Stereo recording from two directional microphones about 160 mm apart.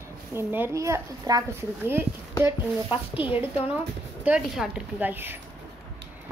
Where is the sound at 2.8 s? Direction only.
35° left (ahead or behind).